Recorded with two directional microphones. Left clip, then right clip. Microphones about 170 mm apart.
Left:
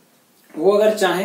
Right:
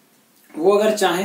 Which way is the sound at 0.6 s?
10° right (ahead or behind).